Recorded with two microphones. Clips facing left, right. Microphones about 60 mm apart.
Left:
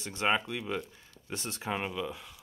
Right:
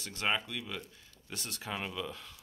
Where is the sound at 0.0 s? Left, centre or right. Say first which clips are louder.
Left 4 dB; left.